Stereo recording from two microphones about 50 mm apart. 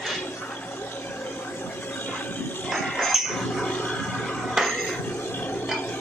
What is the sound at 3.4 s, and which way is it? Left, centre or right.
Chink, centre.